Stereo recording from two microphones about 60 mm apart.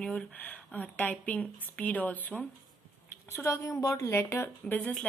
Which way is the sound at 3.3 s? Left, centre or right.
Left.